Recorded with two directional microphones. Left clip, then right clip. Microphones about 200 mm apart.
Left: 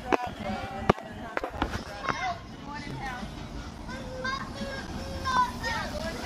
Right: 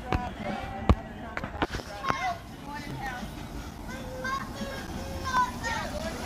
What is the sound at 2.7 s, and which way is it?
Vehicle, 45° right (ahead or behind).